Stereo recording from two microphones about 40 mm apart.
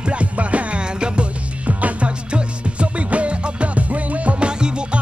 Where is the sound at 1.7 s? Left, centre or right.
Right.